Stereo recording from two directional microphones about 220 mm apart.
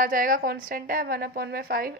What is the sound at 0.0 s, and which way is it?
A woman's voice, 40° right (ahead or behind).